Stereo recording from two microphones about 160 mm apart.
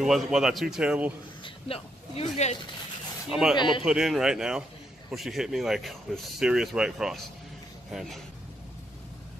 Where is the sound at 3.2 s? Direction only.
5° right (ahead or behind).